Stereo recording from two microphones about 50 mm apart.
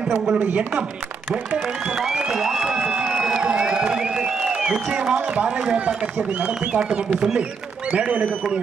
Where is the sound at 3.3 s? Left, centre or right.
Centre.